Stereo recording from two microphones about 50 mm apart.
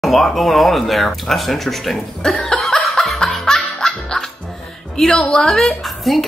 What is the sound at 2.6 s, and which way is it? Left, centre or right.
Laughter, centre.